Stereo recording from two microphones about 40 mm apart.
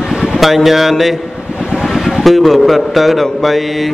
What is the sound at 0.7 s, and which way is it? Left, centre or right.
A man's voice, centre.